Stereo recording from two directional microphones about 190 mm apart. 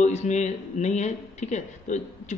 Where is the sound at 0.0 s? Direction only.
35° left (ahead or behind).